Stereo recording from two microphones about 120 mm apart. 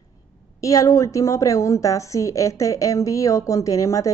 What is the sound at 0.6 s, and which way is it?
A woman's voice, 25° left (ahead or behind).